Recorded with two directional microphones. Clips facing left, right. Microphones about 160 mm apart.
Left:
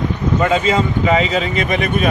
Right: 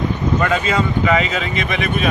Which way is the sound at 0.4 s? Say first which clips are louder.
Left 4 dB; 25° left (ahead or behind).